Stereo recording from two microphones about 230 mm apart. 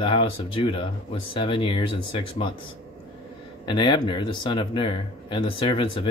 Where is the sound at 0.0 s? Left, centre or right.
Left.